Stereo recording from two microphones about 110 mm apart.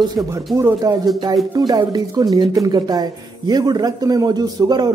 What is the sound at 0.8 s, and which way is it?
A man's voice, 35° right (ahead or behind).